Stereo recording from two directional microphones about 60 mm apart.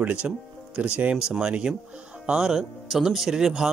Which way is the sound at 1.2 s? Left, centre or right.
Centre.